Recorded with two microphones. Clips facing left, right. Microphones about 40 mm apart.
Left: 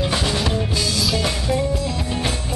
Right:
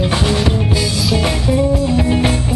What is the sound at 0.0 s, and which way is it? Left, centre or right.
Drum, centre.